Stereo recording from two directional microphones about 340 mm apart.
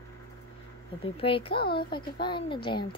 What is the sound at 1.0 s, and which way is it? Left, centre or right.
Speech, centre.